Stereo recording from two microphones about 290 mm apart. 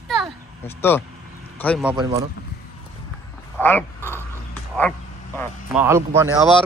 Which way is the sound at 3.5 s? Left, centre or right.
Centre.